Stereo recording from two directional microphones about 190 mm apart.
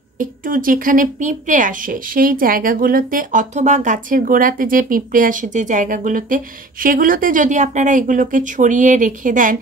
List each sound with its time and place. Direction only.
0.2 s a woman's voice: 45° right (ahead or behind)